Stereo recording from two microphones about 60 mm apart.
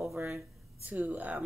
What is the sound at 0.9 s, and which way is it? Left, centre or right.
Speech, right.